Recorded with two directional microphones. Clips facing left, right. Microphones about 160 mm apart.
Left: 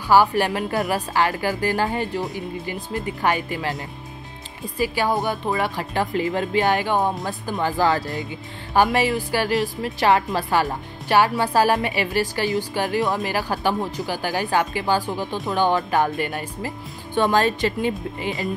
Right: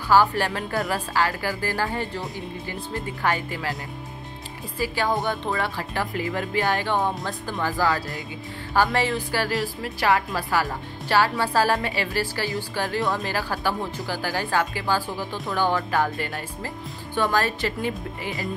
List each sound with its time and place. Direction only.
0.1 s a woman's voice: 15° left (ahead or behind)
4.7 s a woman's voice: 15° left (ahead or behind)